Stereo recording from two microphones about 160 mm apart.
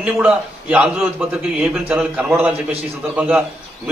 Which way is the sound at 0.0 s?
10° right (ahead or behind).